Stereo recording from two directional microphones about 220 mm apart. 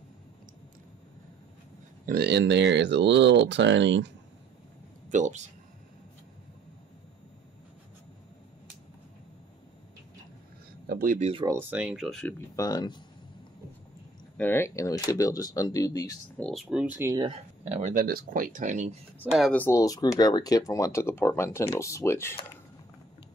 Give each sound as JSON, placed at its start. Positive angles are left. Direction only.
{"t": 2.0, "sound": "speech", "side_deg": -45}
{"t": 5.1, "sound": "speech", "side_deg": -35}
{"t": 10.9, "sound": "speech", "side_deg": -40}
{"t": 11.4, "sound": "speech", "side_deg": -10}
{"t": 12.5, "sound": "speech", "side_deg": 15}
{"t": 14.3, "sound": "speech", "side_deg": 10}
{"t": 16.3, "sound": "speech", "side_deg": 0}
{"t": 19.3, "sound": "speech", "side_deg": 5}